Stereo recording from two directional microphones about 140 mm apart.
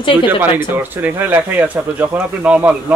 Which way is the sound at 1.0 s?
10° right (ahead or behind).